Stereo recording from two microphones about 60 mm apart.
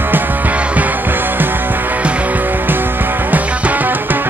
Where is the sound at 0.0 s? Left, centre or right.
Right.